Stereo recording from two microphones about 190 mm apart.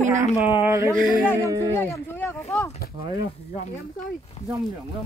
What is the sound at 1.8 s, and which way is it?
Speech, 10° left (ahead or behind).